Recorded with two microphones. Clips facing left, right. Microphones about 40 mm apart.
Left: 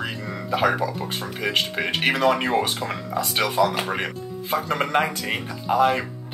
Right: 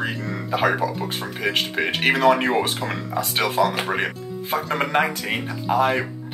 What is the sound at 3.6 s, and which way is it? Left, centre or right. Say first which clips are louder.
Speech: right 1 dB; right.